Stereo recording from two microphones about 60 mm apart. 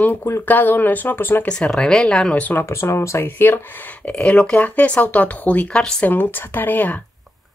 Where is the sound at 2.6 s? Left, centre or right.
Left.